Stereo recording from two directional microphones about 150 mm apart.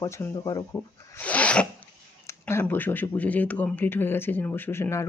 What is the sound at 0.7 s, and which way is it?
Speech, 10° left (ahead or behind).